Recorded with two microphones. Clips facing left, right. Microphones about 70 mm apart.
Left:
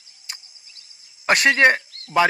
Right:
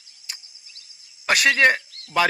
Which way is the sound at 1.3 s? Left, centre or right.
Centre.